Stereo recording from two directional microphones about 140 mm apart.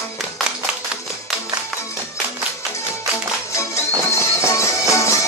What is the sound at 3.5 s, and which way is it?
Music, 20° left (ahead or behind).